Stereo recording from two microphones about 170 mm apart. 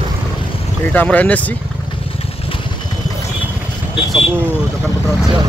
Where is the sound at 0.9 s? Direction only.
10° left (ahead or behind).